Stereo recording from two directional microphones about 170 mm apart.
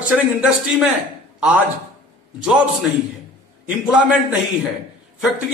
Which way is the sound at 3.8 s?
5° right (ahead or behind).